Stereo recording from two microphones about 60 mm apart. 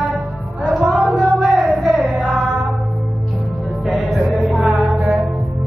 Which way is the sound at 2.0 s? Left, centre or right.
Right.